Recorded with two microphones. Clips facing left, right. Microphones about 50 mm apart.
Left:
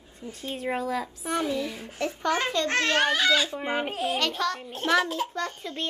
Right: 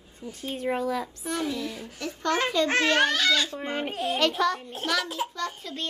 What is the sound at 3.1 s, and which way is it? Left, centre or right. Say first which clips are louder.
A child's voice: left 1 dB; centre.